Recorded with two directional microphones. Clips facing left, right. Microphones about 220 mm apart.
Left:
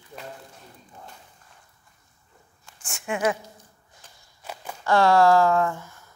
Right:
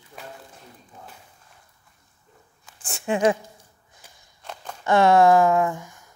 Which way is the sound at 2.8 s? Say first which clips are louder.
Right 5 dB; 35° right (ahead or behind).